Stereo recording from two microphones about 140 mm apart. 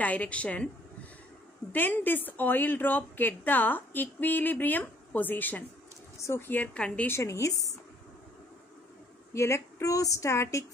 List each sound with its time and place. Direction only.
0.0 s a woman's voice: 10° left (ahead or behind)
1.7 s a woman's voice: 15° left (ahead or behind)
9.3 s speech: 20° left (ahead or behind)